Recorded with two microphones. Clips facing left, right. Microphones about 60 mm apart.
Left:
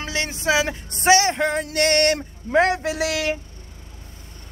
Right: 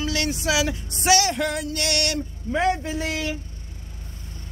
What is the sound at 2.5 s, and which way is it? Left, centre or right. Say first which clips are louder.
Speech: left 4 dB; left.